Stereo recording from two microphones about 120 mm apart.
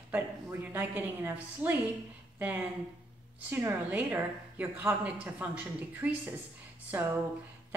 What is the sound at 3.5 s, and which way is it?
A woman's voice, 15° right (ahead or behind).